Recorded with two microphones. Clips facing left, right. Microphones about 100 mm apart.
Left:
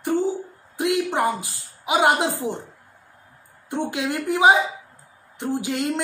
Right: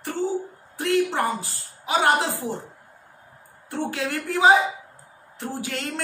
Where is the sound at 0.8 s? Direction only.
15° left (ahead or behind).